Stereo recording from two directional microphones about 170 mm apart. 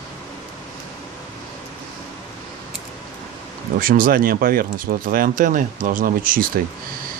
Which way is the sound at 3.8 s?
55° right (ahead or behind).